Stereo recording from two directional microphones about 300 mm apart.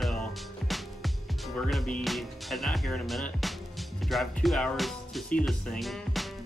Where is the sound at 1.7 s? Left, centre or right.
Centre.